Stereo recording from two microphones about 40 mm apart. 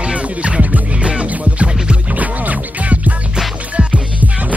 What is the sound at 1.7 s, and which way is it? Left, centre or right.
Music, centre.